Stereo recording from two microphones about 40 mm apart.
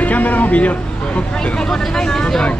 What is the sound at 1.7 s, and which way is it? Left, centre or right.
Vehicle, centre.